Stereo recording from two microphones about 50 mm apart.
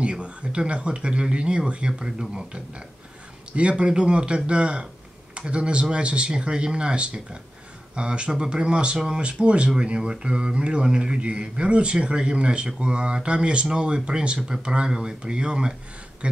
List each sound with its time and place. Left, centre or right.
0.0 s speech: right
9.2 s speech: right